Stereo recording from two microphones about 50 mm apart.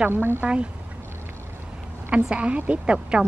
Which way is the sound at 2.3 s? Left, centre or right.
Right.